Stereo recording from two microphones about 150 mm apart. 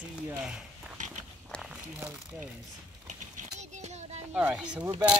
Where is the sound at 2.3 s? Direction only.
10° right (ahead or behind).